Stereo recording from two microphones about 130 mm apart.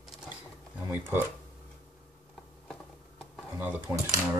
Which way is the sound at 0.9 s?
15° right (ahead or behind).